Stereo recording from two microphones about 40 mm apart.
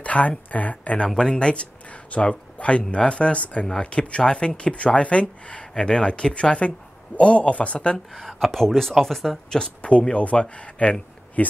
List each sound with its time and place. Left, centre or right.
0.0 s speech: left
1.0 s speech: centre
8.1 s speech: centre
9.8 s speech: left